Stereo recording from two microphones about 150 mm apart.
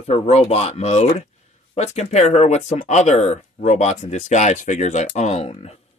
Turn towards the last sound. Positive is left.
turn(degrees=45)  # may be behind; listen again after turning